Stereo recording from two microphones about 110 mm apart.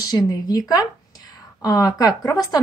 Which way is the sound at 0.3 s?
35° left (ahead or behind).